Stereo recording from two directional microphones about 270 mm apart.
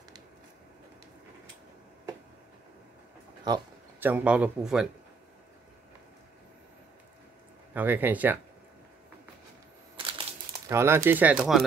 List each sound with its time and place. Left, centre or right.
3.4 s speech: centre
7.7 s speech: centre
9.9 s crumpling: centre
10.7 s speech: centre